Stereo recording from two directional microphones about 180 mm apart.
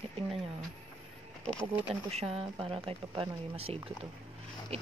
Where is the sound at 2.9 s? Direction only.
30° right (ahead or behind).